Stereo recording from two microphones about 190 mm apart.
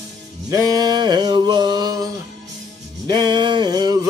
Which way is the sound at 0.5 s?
20° right (ahead or behind).